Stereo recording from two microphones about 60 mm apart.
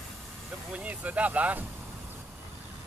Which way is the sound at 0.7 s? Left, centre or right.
Right.